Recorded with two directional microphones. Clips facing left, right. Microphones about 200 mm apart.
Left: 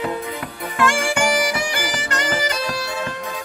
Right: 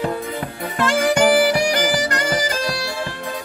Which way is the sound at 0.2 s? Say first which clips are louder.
Right 2 dB; 45° right (ahead or behind).